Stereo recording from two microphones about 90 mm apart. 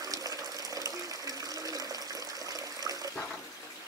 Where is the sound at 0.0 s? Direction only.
45° right (ahead or behind).